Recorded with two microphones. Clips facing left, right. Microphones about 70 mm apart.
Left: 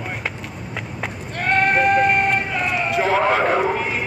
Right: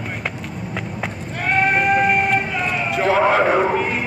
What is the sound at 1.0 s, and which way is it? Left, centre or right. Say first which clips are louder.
Sheep: right 1 dB; centre.